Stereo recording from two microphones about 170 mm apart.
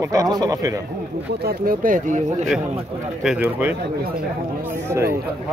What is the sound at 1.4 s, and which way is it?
Speech, 55° right (ahead or behind).